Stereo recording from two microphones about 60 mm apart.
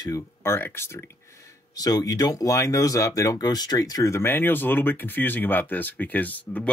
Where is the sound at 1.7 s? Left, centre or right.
Left.